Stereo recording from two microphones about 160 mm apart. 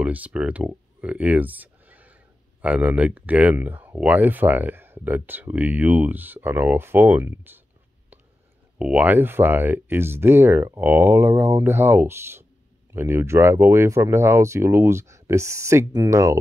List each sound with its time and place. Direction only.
0.0 s speech: 10° right (ahead or behind)
8.7 s speech: 5° right (ahead or behind)